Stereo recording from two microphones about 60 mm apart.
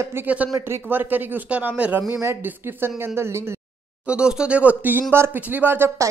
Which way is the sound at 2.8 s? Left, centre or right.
Right.